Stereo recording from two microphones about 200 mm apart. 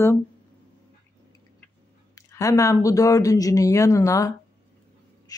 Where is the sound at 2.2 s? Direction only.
15° left (ahead or behind).